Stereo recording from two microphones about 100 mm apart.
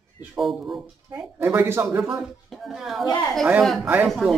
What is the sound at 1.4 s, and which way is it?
Speech, 20° right (ahead or behind).